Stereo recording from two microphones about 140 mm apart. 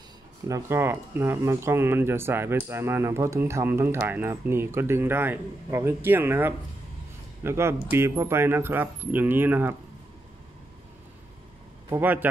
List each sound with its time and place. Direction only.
0.5 s speech: 20° right (ahead or behind)
11.9 s speech: 15° right (ahead or behind)